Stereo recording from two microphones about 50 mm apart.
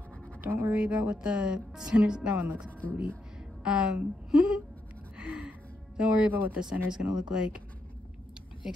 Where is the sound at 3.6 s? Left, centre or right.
Centre.